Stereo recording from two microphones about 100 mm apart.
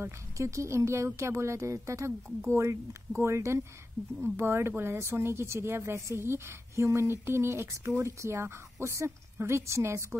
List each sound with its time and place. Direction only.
0.0 s speech: 30° right (ahead or behind)